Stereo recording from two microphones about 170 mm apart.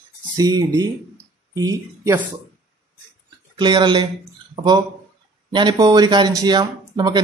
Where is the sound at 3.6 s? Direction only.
25° right (ahead or behind).